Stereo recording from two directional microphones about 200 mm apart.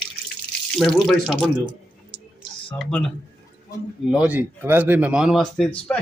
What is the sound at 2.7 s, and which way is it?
Speech, 5° left (ahead or behind).